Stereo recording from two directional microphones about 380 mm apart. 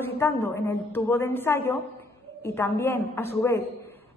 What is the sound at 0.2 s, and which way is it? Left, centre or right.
A woman's voice, centre.